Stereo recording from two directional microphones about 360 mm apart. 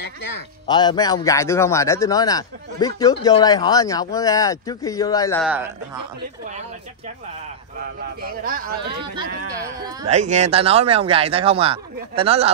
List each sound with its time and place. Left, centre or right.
0.0 s speech: left
0.7 s a man's voice: centre
8.2 s speech: right
8.9 s speech: centre